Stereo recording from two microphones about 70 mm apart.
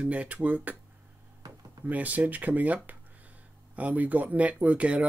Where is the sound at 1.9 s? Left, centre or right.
Right.